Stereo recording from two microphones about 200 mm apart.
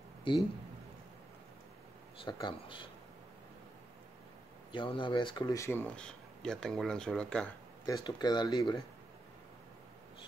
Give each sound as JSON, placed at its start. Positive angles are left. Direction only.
{"t": 2.1, "sound": "speech", "side_deg": 25}
{"t": 4.7, "sound": "speech", "side_deg": 25}
{"t": 7.8, "sound": "speech", "side_deg": 20}